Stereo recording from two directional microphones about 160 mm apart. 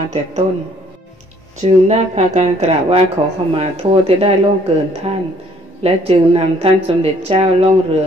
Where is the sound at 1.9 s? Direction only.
45° right (ahead or behind).